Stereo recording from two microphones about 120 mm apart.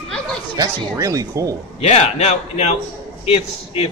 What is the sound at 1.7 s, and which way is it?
A man's voice, 65° left (ahead or behind).